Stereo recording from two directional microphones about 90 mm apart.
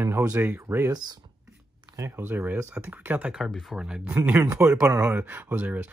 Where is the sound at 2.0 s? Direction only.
25° right (ahead or behind); by 4.0 s 10° right (ahead or behind).